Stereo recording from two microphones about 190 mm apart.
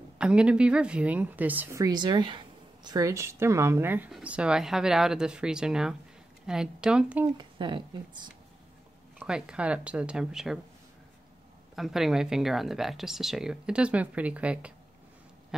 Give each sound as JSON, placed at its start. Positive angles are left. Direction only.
{"t": 0.2, "sound": "speech", "side_deg": -5}
{"t": 7.3, "sound": "a woman's voice", "side_deg": -25}
{"t": 9.2, "sound": "speech", "side_deg": -5}
{"t": 11.7, "sound": "speech", "side_deg": 0}